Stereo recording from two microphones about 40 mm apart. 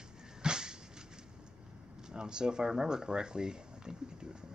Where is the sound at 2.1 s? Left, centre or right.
Centre.